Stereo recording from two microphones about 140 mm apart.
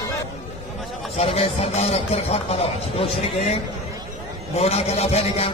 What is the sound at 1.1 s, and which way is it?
A man's voice, 45° left (ahead or behind).